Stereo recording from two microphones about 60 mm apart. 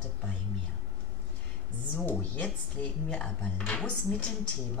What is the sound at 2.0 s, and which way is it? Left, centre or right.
Speech, left.